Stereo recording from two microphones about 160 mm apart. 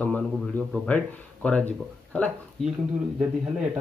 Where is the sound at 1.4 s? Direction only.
10° left (ahead or behind).